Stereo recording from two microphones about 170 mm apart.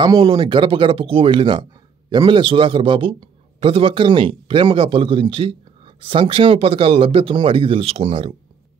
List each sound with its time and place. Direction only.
0.0 s speech: 25° right (ahead or behind)